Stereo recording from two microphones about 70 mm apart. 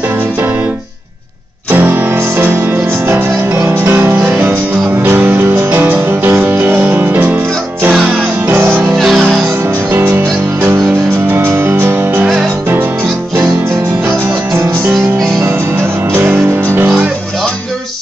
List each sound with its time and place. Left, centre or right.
1.7 s music: right
8.5 s music: right
8.9 s music: centre
9.9 s music: right
16.1 s music: right